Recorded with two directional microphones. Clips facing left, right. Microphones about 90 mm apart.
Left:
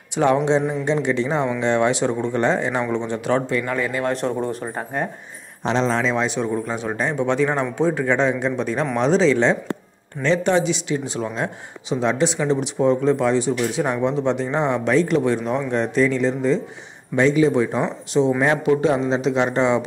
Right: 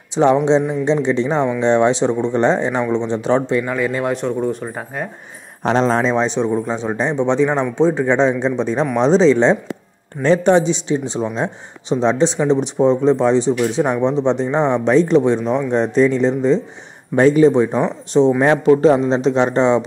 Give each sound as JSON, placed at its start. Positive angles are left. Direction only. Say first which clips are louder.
{"t": 0.1, "sound": "speech", "louder": "right 4 dB", "side_deg": -25}
{"t": 3.6, "sound": "a man's voice", "louder": "right 3 dB", "side_deg": -10}
{"t": 4.1, "sound": "speech", "louder": "right 3 dB", "side_deg": 0}
{"t": 5.6, "sound": "a man's voice", "louder": "right 4 dB", "side_deg": -50}
{"t": 6.1, "sound": "a man's voice", "louder": "right 4 dB", "side_deg": -30}
{"t": 17.1, "sound": "a man's voice", "louder": "right 5 dB", "side_deg": -45}
{"t": 17.5, "sound": "a man's voice", "louder": "right 5 dB", "side_deg": -30}